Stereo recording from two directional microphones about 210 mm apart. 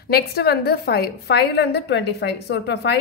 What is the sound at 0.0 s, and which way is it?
A woman's voice, 50° left (ahead or behind).